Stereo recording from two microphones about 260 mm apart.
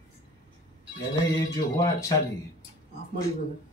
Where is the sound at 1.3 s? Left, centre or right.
Centre.